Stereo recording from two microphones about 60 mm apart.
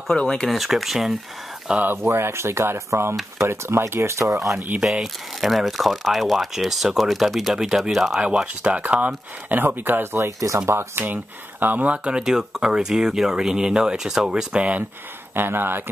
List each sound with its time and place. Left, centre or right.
0.1 s speech: centre
0.5 s speech: centre
2.0 s speech: right
4.7 s speech: centre
8.2 s speech: centre; by 10.2 s right
10.2 s speech: right
10.7 s speech: right
11.6 s speech: right
15.3 s speech: right